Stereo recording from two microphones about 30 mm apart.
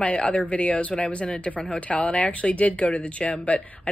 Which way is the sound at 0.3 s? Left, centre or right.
Left.